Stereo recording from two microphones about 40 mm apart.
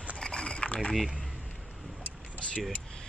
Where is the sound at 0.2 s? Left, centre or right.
Left.